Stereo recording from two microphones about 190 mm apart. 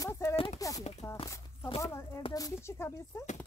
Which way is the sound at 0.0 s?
15° left (ahead or behind).